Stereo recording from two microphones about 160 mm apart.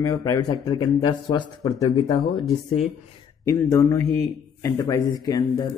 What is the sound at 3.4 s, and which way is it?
Speech, 20° left (ahead or behind).